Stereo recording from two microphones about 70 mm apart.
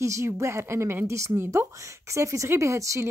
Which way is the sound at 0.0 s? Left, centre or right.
Right.